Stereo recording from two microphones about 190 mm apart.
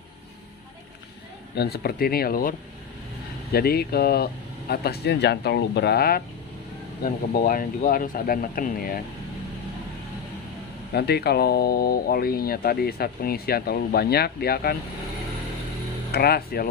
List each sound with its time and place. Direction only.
1.5 s speech: 60° left (ahead or behind)
3.5 s speech: 55° left (ahead or behind)
10.9 s speech: 60° left (ahead or behind)
16.1 s speech: 55° left (ahead or behind)